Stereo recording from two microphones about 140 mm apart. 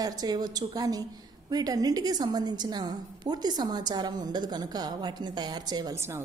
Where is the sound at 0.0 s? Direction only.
30° right (ahead or behind).